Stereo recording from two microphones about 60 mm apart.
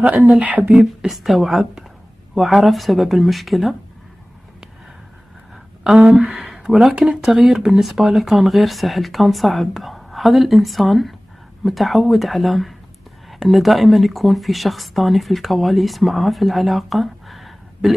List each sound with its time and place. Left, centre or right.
0.0 s speech: right
1.0 s speech: centre
5.9 s speech: centre